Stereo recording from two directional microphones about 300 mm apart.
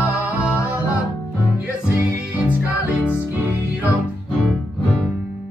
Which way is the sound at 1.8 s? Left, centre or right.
Centre.